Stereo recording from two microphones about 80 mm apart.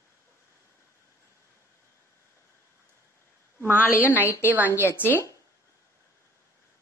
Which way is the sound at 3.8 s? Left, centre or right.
Left.